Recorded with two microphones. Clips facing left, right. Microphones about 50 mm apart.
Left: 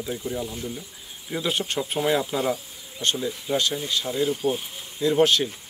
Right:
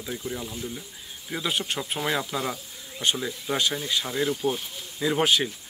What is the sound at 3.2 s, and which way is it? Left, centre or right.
Speech, centre.